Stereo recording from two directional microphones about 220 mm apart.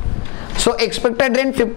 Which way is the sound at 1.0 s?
15° left (ahead or behind).